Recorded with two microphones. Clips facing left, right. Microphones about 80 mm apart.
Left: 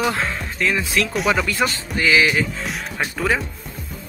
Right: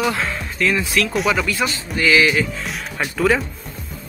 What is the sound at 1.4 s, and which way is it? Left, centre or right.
Speech, left.